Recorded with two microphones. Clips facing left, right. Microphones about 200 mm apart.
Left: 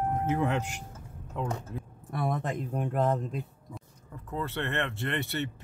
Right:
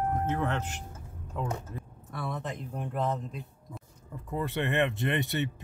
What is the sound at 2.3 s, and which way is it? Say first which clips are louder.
Speech: left 4 dB; 55° left (ahead or behind).